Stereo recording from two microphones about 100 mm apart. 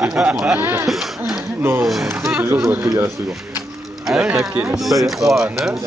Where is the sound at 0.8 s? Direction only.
Centre (ahead or behind).